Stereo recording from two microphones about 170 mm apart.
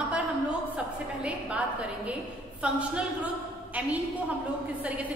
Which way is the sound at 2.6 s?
5° right (ahead or behind).